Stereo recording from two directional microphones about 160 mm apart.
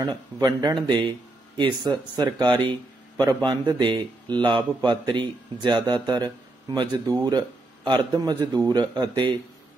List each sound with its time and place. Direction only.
0.0 s speech: 25° right (ahead or behind)